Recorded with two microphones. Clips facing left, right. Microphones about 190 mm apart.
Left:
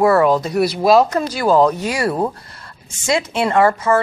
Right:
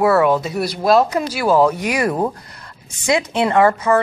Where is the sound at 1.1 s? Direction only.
10° right (ahead or behind).